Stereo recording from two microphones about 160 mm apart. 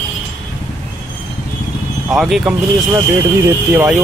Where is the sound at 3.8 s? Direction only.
10° right (ahead or behind).